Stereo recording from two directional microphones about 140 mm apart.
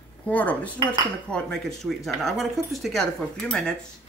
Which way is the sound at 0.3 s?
10° left (ahead or behind).